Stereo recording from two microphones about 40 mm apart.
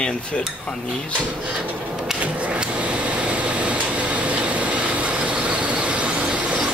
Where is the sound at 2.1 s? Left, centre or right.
Right.